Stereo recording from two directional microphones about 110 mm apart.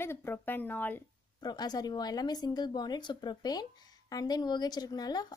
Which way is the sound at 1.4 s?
40° left (ahead or behind).